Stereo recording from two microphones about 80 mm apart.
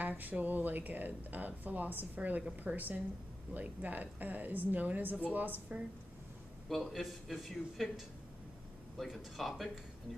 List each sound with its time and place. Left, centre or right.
0.0 s speech: right
6.7 s speech: centre
8.9 s speech: centre